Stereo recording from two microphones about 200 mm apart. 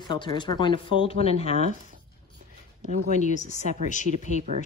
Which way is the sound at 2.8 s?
40° right (ahead or behind).